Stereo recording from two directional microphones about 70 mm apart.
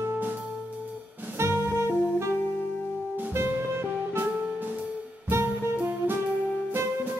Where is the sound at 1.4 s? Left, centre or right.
Right.